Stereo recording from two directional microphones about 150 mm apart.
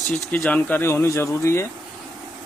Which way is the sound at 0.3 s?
10° left (ahead or behind).